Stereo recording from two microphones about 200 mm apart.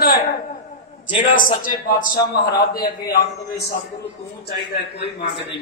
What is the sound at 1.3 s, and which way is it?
Speech, 40° left (ahead or behind).